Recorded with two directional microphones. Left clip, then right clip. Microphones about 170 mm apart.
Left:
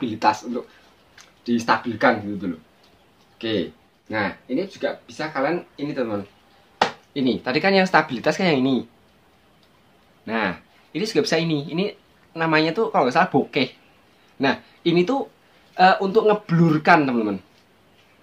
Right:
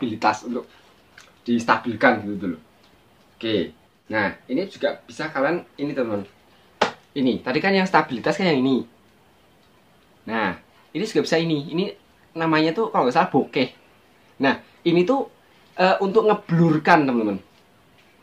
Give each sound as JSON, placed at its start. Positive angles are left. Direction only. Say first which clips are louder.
{"t": 0.0, "sound": "speech", "louder": "left 1 dB", "side_deg": 10}
{"t": 7.2, "sound": "speech", "louder": "even", "side_deg": 20}
{"t": 10.2, "sound": "speech", "louder": "even", "side_deg": 20}